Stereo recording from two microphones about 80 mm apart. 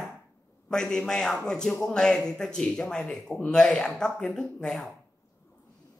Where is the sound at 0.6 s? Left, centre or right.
Centre.